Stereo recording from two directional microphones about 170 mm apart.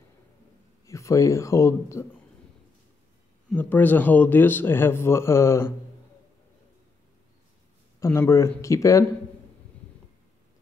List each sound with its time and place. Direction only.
0.8 s speech: 20° left (ahead or behind)
3.4 s speech: 10° left (ahead or behind)
8.0 s speech: 15° left (ahead or behind)